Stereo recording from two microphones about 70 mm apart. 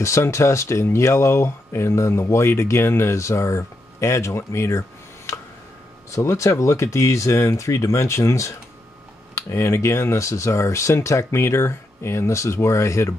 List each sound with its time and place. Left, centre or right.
0.0 s speech: left